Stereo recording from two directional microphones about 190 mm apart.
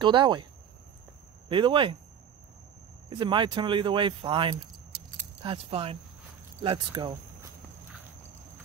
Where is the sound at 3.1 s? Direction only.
25° right (ahead or behind).